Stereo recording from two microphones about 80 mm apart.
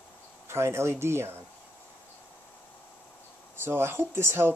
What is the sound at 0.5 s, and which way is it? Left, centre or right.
Speech, right.